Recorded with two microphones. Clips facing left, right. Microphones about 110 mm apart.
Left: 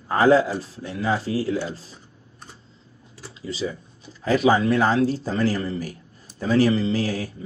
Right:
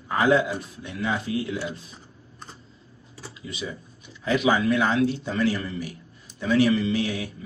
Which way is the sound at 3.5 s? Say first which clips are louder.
Left 6 dB; 30° left (ahead or behind).